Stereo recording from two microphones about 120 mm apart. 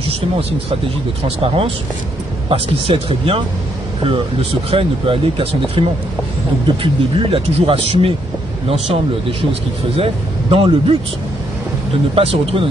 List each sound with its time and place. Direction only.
0.1 s speech: 55° right (ahead or behind)
12.2 s speech: 50° right (ahead or behind)